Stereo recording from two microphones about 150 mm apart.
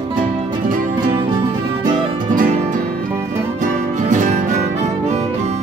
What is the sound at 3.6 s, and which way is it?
Music, 55° right (ahead or behind).